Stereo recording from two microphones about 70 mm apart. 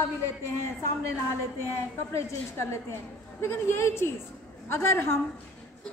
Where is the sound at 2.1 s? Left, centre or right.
Left.